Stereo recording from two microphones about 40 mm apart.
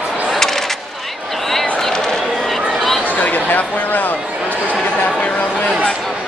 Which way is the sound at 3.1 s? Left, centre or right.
Left.